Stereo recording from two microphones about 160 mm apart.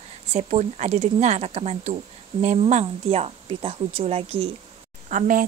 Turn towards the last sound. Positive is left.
turn(degrees=-55)  # may be behind; listen again after turning